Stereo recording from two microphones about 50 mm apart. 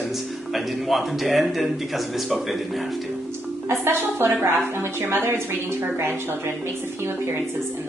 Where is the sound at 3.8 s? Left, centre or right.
Right.